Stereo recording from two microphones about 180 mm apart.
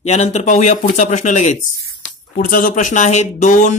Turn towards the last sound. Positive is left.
turn(degrees=45)  # may be behind; listen again after turning